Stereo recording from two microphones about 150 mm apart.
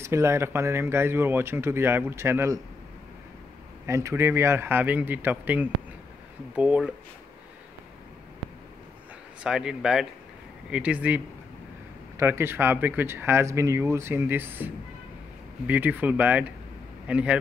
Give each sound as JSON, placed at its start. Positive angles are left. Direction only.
{"t": 0.0, "sound": "speech", "side_deg": -20}
{"t": 3.8, "sound": "speech", "side_deg": -20}
{"t": 9.4, "sound": "speech", "side_deg": -5}